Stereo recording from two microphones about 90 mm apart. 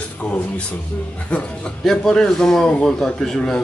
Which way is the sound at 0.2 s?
15° left (ahead or behind).